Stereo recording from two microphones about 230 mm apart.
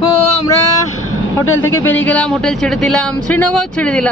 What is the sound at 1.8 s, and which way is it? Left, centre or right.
Speech, centre.